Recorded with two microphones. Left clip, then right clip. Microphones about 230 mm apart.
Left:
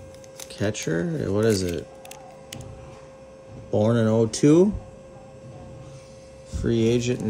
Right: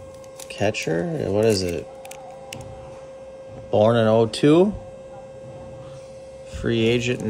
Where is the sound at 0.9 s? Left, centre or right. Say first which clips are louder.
Right 3 dB; right.